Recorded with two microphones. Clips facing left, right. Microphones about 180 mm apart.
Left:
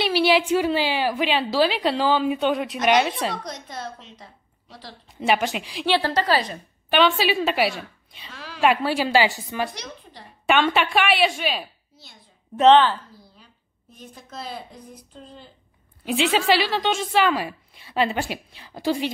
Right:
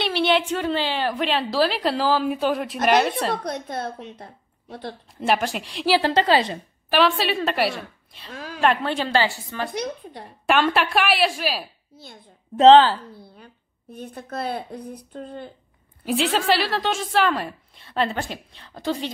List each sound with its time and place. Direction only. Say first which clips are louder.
0.0 s a woman's voice: left 2 dB; 5° left (ahead or behind)
3.4 s a woman's voice: right 6 dB; 60° right (ahead or behind)
5.1 s a woman's voice: left 1 dB; centre (ahead or behind)
5.9 s a woman's voice: right 3 dB; 20° right (ahead or behind)
6.9 s a woman's voice: left 1 dB; centre (ahead or behind)
8.3 s a sound: right 5 dB; 45° right (ahead or behind)
8.5 s a woman's voice: left 1 dB; 5° left (ahead or behind)
10.4 s a woman's voice: even; centre (ahead or behind)
12.5 s speech: right 3 dB; 30° right (ahead or behind)
13.9 s speech: right 7 dB; 60° right (ahead or behind)
16.1 s a woman's voice: left 1 dB; centre (ahead or behind)